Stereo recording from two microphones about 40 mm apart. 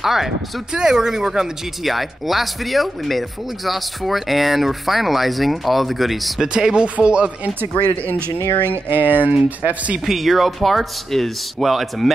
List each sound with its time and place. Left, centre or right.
0.0 s speech: centre
0.7 s speech: centre
1.9 s speech: centre
6.4 s speech: centre
8.6 s speech: right
9.6 s speech: right
10.0 s speech: centre